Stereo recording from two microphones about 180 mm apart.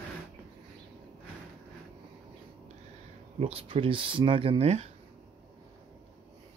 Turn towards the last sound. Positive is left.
turn(degrees=-35)  # may be behind; listen again after turning